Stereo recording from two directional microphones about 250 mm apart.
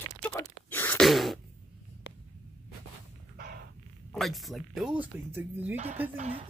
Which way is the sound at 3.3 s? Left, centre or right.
Right.